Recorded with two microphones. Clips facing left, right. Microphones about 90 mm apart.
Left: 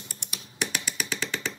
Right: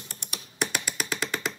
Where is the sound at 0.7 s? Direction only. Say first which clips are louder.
Right 1 dB; 40° right (ahead or behind).